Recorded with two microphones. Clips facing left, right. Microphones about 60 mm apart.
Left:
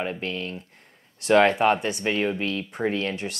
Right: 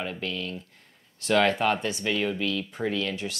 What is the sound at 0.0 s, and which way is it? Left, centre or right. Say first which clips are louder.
Speech: left 3 dB; left.